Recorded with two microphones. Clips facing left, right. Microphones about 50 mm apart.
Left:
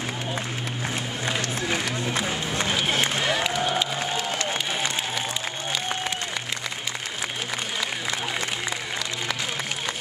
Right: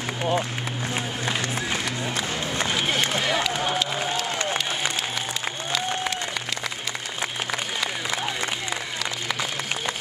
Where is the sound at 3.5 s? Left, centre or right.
Centre.